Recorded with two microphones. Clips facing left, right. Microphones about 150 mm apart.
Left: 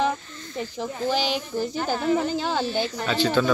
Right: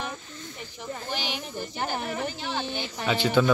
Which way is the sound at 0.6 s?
90° left.